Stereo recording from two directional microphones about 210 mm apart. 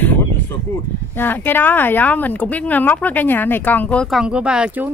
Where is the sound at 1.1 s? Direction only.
10° left (ahead or behind).